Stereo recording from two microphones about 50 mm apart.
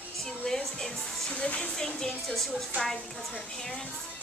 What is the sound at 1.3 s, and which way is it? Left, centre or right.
A child's voice, left.